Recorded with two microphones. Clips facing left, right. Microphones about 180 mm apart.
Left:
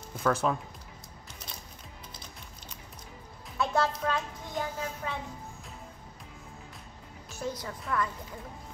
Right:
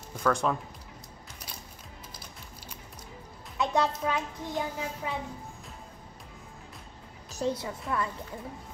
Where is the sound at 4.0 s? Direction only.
10° right (ahead or behind).